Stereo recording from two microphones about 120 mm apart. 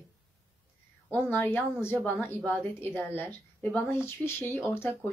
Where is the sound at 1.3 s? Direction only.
15° left (ahead or behind).